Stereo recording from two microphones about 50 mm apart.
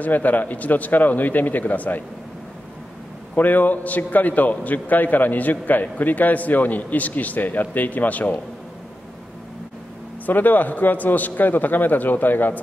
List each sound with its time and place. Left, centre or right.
0.0 s a man's voice: left
3.3 s a man's voice: left
10.2 s a man's voice: left